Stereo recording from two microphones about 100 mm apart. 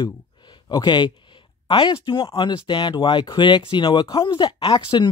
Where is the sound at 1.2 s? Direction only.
55° left (ahead or behind).